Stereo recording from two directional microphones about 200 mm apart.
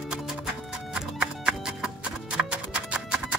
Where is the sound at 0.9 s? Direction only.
5° right (ahead or behind).